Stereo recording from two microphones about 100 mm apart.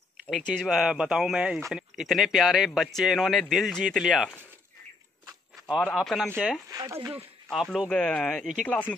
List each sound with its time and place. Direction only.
0.4 s speech: 5° left (ahead or behind)
5.9 s speech: centre (ahead or behind)
6.7 s speech: 35° right (ahead or behind)
7.5 s speech: 5° right (ahead or behind); by 8.9 s 15° left (ahead or behind)